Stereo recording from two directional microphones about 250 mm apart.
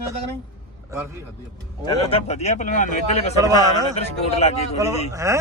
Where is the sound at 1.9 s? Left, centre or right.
Left.